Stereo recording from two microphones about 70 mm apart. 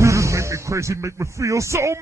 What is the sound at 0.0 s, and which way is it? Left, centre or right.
Speech, right.